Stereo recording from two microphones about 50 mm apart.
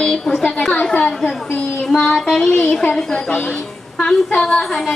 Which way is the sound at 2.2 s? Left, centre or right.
Centre.